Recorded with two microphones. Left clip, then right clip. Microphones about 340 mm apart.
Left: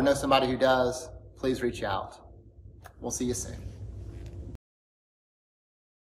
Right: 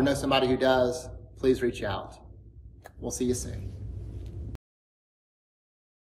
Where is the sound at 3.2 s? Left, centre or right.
Centre.